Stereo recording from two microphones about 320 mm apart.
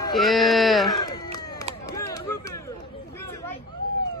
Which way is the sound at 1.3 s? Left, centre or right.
Centre.